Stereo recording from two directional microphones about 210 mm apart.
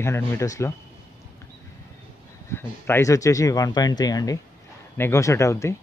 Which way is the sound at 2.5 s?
10° left (ahead or behind).